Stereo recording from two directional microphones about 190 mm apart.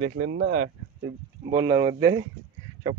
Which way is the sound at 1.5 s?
20° right (ahead or behind).